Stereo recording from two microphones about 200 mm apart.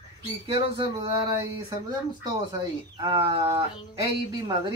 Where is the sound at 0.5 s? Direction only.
25° right (ahead or behind).